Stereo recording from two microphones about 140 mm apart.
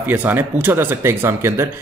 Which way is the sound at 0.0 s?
10° right (ahead or behind).